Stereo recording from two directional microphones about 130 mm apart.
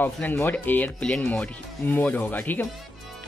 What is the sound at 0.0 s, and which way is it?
Speech, 15° left (ahead or behind).